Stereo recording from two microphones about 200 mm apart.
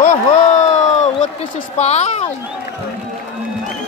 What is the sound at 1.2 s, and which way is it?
Speech, 30° left (ahead or behind).